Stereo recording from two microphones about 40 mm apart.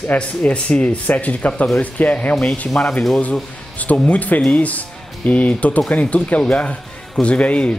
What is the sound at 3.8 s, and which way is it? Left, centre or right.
Speech, left.